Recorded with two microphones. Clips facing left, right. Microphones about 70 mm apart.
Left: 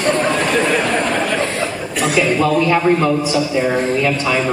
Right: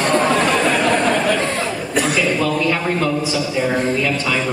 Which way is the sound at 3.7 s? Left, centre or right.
Left.